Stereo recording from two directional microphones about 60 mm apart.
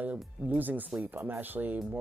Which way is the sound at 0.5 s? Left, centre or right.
Right.